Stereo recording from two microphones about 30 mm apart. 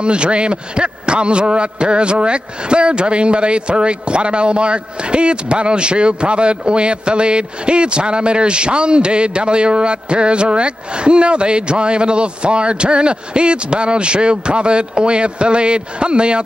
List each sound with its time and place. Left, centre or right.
0.0 s a man's voice: right